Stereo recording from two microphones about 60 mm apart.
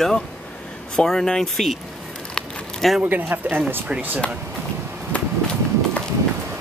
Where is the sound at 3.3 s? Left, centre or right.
Right.